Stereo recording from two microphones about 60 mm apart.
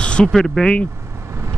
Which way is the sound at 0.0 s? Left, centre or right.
Centre.